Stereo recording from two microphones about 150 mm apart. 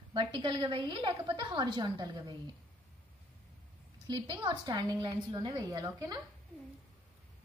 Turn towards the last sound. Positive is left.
turn(degrees=-25)  # may be behind; listen again after turning